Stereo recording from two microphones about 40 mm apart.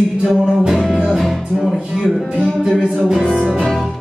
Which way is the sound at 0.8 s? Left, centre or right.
Centre.